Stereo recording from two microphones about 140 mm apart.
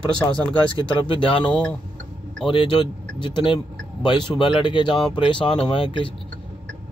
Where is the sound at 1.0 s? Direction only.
40° left (ahead or behind).